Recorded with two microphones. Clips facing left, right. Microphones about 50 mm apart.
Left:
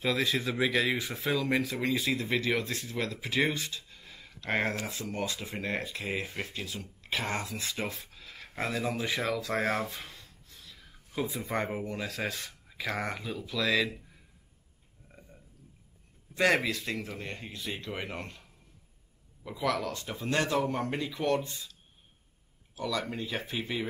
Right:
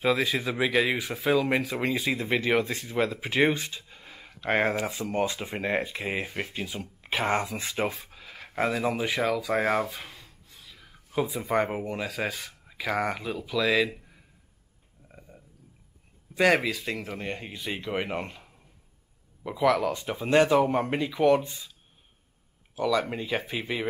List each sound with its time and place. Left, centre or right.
0.0 s speech: centre
1.4 s speech: centre
4.6 s speech: centre
5.1 s speech: right; by 9.6 s centre
9.7 s a sound: centre
11.2 s speech: centre
11.7 s speech: right
12.0 s speech: centre
16.3 s a man's voice: centre
23.5 s speech: centre